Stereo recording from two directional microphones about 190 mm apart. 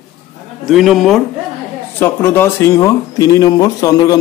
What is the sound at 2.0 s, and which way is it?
Speech, 10° left (ahead or behind).